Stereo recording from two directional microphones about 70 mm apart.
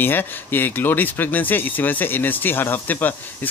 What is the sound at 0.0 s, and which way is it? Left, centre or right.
Speech, left.